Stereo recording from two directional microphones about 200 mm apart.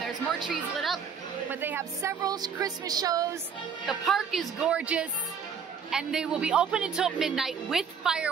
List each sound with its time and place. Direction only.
0.0 s speech: centre (ahead or behind); by 3.3 s 15° right (ahead or behind)
3.8 s a woman's voice: centre (ahead or behind)